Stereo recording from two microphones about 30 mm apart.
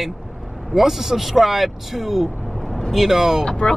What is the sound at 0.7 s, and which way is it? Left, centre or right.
Speech, centre.